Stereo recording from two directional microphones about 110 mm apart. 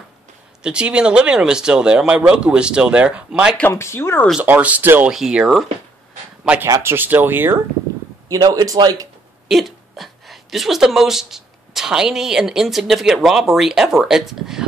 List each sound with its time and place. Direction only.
0.6 s speech: 10° right (ahead or behind)
3.7 s speech: 25° left (ahead or behind)
4.4 s speech: 15° right (ahead or behind)
5.1 s speech: 5° right (ahead or behind)
6.6 s speech: 20° right (ahead or behind)
8.3 s speech: 35° right (ahead or behind)
9.5 s speech: centre (ahead or behind)